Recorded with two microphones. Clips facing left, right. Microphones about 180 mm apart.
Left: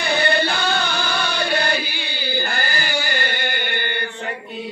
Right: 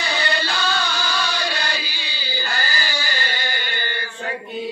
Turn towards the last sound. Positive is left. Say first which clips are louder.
# left 4 dB
turn(degrees=60)  # may be behind; listen again after turning